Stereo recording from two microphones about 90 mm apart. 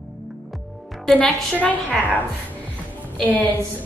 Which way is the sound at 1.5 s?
15° left (ahead or behind).